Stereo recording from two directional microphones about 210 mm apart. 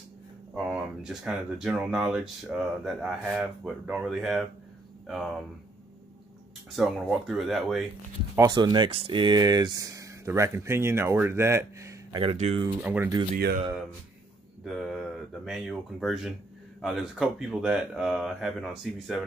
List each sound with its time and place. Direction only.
0.7 s speech: 5° right (ahead or behind)
6.7 s speech: centre (ahead or behind)
8.4 s speech: 20° right (ahead or behind)
12.8 s speech: 10° right (ahead or behind)
13.3 s speech: 50° right (ahead or behind)
14.6 s speech: centre (ahead or behind)